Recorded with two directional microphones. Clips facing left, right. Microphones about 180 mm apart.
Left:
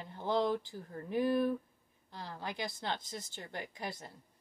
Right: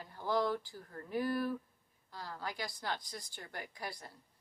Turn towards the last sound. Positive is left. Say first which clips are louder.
# left 3 dB
turn(degrees=20)  # may be behind; listen again after turning